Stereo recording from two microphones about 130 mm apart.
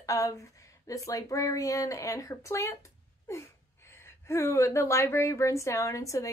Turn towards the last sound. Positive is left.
turn(degrees=25)  # may be behind; listen again after turning